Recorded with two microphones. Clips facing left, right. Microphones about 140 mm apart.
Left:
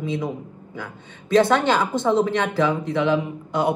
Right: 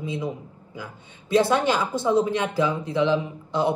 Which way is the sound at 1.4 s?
60° left (ahead or behind).